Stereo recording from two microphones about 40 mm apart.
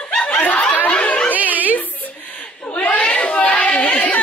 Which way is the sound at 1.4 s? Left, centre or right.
Right.